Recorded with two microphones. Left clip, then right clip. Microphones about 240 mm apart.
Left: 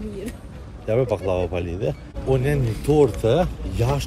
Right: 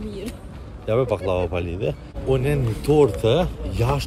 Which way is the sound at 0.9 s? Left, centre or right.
Centre.